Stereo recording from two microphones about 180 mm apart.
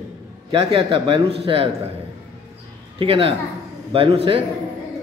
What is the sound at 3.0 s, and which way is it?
A man's voice, 30° right (ahead or behind).